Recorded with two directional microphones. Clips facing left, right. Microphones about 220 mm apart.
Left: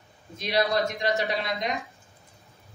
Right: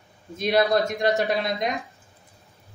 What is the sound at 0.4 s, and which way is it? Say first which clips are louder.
Speech: right 4 dB; 50° right (ahead or behind).